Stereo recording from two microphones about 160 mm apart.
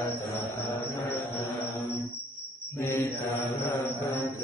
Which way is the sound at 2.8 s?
20° left (ahead or behind).